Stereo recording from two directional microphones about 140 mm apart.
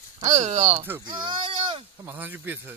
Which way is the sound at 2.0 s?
15° right (ahead or behind).